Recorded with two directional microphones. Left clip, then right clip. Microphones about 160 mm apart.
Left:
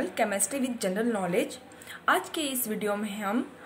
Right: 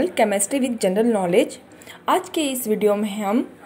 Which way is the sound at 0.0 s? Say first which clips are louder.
Right 9 dB; 25° right (ahead or behind).